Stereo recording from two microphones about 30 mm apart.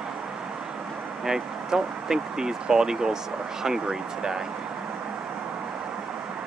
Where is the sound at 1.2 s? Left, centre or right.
Centre.